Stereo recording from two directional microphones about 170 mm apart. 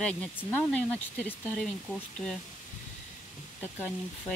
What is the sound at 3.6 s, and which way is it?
Speech, 10° left (ahead or behind).